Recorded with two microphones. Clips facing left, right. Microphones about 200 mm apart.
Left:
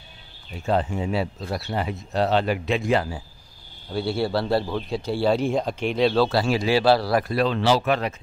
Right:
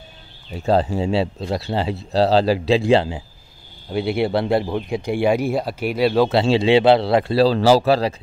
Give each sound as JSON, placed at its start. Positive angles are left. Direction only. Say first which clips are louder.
{"t": 0.6, "sound": "speech", "louder": "right 5 dB", "side_deg": -35}
{"t": 6.2, "sound": "speech", "louder": "right 5 dB", "side_deg": -25}